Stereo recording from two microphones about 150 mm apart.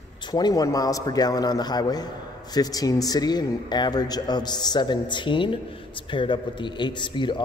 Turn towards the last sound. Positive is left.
turn(degrees=30)  # may be behind; listen again after turning